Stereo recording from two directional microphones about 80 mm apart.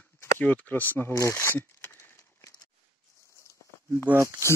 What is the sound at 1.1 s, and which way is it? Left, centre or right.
Speech, left.